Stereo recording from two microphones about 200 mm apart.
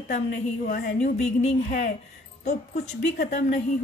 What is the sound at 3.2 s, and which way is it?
Speech, 40° left (ahead or behind).